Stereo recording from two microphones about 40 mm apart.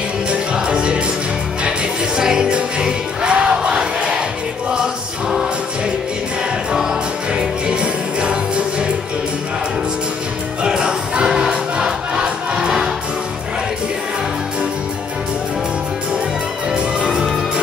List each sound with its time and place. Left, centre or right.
0.3 s music: right
2.1 s music: centre
6.7 s jingle bell: centre
10.6 s music: centre
16.7 s music: right